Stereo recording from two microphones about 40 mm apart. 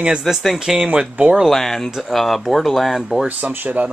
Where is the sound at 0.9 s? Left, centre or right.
Right.